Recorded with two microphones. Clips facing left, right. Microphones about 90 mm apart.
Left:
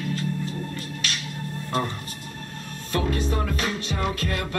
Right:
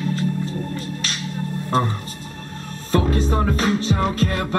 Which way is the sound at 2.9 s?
35° right (ahead or behind).